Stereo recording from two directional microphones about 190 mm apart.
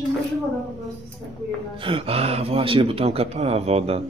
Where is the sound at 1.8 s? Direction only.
30° right (ahead or behind).